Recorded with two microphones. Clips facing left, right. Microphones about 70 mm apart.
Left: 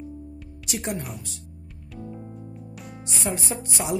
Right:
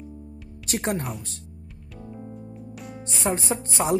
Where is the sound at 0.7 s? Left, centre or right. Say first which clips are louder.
Right 3 dB; right.